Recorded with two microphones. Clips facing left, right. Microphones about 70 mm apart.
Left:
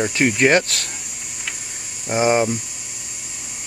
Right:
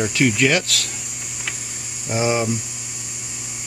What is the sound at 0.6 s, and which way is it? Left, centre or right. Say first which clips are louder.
Speech: right 2 dB; right.